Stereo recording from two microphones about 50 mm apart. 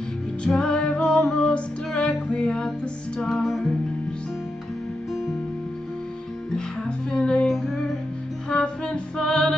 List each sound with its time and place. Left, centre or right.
0.5 s music: centre
1.0 s music: centre
6.5 s music: centre
7.4 s music: centre